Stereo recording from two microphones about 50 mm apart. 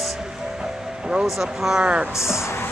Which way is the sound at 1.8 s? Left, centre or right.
Right.